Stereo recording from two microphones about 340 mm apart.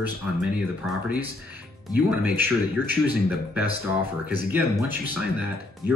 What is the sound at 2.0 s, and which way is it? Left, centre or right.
Speech, centre.